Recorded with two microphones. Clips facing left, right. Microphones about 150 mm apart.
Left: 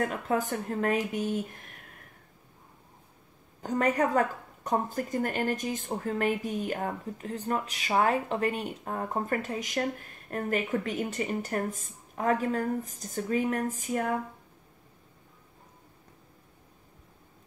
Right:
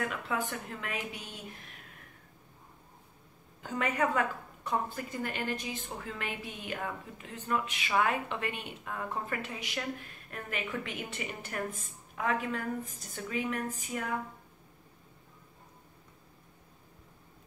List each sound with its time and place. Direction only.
0.0 s a woman's voice: 40° left (ahead or behind)
3.6 s a woman's voice: 40° left (ahead or behind)